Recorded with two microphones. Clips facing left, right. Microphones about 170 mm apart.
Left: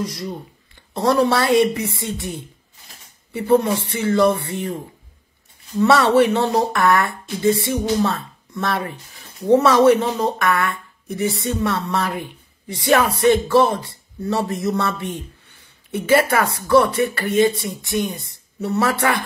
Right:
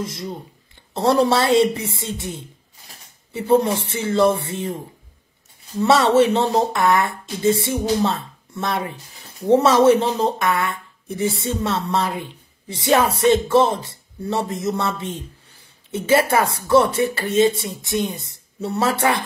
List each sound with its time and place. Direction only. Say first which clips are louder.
0.0 s speech: left 2 dB; 25° right (ahead or behind)
3.3 s speech: even; 25° right (ahead or behind)
5.8 s speech: left 1 dB; 25° right (ahead or behind)